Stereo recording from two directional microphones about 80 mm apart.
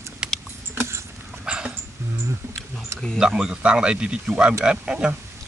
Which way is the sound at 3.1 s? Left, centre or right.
Centre.